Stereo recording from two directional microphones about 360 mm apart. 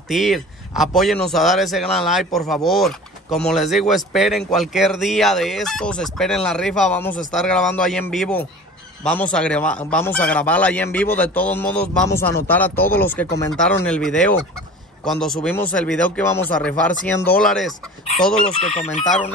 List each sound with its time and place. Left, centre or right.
0.1 s a man's voice: centre
18.4 s chicken: centre